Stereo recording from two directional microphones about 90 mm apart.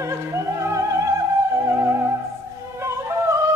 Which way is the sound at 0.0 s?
35° right (ahead or behind).